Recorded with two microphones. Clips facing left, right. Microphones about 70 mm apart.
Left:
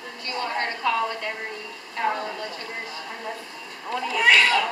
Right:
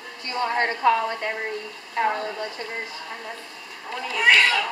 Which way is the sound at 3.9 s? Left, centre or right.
Centre.